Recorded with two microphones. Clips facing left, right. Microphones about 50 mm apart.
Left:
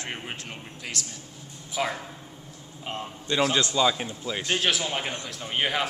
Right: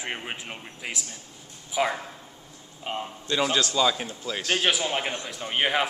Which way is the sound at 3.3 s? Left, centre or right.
Centre.